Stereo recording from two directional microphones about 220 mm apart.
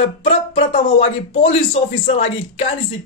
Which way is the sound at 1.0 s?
25° left (ahead or behind).